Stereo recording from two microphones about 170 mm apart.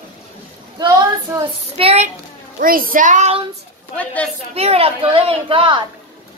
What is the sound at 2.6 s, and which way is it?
Speech, 55° right (ahead or behind).